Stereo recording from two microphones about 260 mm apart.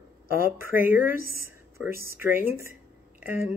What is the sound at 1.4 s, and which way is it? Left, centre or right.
Speech, centre.